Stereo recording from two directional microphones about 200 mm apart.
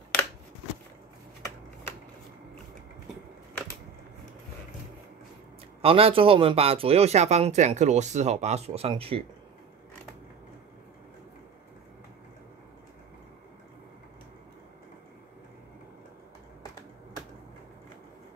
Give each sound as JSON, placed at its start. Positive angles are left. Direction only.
{"t": 5.8, "sound": "a man's voice", "side_deg": -30}